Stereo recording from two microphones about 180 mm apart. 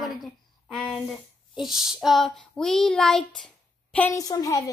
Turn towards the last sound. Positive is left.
turn(degrees=20)  # may be behind; listen again after turning